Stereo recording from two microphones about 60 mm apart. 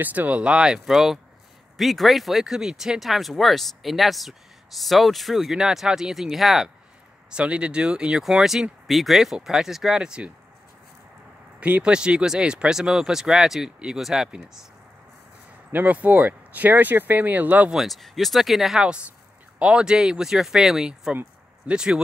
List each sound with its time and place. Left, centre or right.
0.0 s speech: right
0.7 s speech: centre
7.2 s speech: centre
11.6 s speech: centre
15.7 s speech: right
17.6 s speech: centre